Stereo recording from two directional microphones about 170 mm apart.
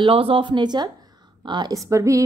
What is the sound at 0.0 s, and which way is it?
A woman's voice, 30° right (ahead or behind).